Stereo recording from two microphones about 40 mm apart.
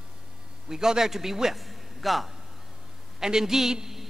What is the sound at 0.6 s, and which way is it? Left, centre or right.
A man's voice, centre.